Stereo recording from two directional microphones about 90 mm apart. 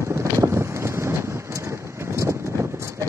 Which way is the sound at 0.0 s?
35° right (ahead or behind).